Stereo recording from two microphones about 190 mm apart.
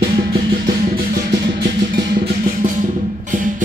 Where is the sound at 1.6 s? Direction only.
55° right (ahead or behind).